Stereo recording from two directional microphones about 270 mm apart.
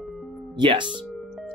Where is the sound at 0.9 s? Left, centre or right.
Centre.